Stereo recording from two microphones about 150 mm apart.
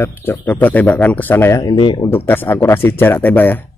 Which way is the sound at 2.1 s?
15° left (ahead or behind).